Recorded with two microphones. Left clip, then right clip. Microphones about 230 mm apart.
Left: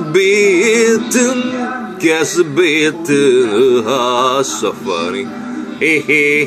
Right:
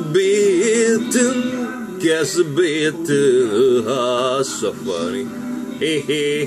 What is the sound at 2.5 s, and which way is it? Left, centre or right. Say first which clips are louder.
Speech: left 5 dB; left.